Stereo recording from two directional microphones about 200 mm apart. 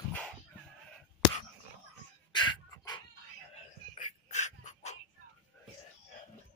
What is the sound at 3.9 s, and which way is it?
Dog, 35° left (ahead or behind).